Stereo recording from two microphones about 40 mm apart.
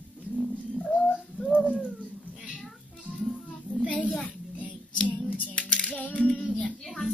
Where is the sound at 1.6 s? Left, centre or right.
Right.